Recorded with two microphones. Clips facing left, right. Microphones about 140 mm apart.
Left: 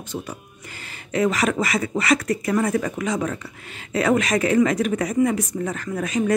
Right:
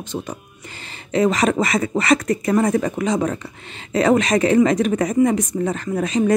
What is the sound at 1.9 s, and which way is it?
Speech, 30° right (ahead or behind).